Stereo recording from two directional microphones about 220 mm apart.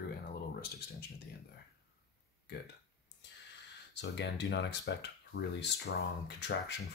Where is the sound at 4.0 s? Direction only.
50° left (ahead or behind).